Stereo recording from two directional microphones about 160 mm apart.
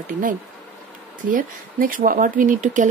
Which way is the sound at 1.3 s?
55° right (ahead or behind).